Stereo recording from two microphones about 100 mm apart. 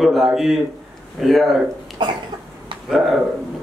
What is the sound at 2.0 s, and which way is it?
Cough, 50° right (ahead or behind).